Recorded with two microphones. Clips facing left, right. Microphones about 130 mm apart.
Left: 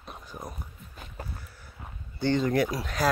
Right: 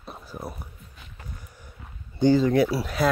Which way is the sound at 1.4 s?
15° right (ahead or behind).